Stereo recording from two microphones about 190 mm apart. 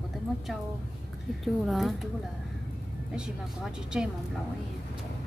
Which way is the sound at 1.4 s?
Centre (ahead or behind).